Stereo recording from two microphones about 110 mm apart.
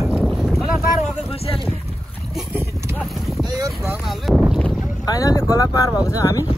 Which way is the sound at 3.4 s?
35° right (ahead or behind).